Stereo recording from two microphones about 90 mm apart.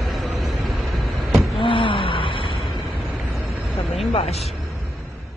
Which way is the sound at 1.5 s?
75° left (ahead or behind).